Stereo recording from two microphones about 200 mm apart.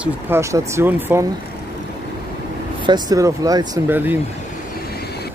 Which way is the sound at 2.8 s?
20° right (ahead or behind).